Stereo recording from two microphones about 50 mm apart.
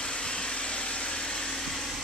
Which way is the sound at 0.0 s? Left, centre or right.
Centre.